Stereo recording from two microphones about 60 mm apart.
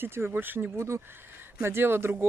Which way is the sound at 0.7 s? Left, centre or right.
Right.